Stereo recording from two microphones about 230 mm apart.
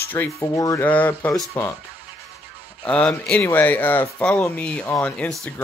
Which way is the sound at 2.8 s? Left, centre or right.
Centre.